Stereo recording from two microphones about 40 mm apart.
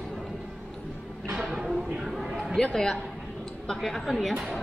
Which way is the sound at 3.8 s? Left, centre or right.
Centre.